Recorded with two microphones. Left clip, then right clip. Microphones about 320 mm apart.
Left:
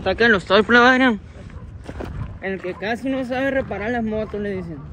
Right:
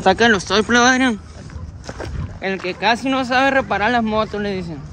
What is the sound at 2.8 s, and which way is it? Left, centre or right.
Speech, centre.